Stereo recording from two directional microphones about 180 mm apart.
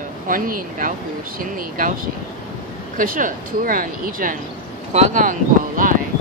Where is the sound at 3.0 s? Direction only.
50° right (ahead or behind).